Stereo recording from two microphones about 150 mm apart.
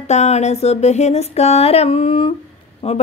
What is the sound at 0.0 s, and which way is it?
A woman's voice, 45° left (ahead or behind).